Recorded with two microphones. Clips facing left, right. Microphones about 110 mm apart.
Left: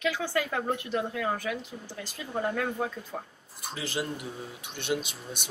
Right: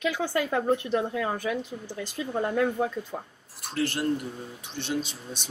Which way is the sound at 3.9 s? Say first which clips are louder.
Right 5 dB; 5° left (ahead or behind).